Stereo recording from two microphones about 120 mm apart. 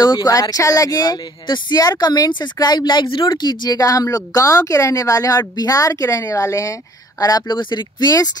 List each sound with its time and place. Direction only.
0.0 s speech: 35° left (ahead or behind)